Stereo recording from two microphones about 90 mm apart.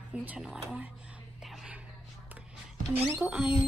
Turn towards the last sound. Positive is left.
turn(degrees=-10)  # may be behind; listen again after turning